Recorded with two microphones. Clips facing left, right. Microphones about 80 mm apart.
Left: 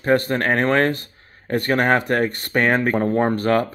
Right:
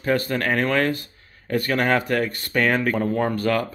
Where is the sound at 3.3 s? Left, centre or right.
Left.